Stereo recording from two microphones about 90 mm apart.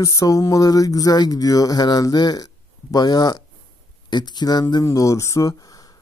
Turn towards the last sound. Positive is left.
turn(degrees=40)  # may be behind; listen again after turning